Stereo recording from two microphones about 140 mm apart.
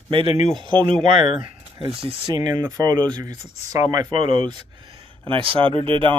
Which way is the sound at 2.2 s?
30° right (ahead or behind).